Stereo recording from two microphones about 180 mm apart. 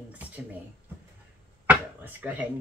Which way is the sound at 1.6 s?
10° right (ahead or behind).